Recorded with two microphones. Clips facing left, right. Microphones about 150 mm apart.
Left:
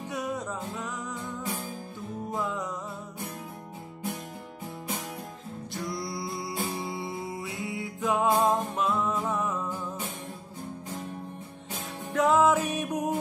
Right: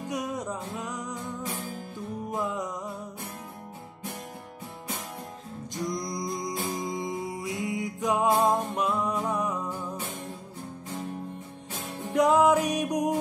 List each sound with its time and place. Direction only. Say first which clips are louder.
0.1 s music: right 1 dB; 20° right (ahead or behind)
2.3 s music: right 1 dB; 20° right (ahead or behind)
5.8 s music: right 3 dB; 15° right (ahead or behind)
12.1 s music: right 2 dB; 15° right (ahead or behind)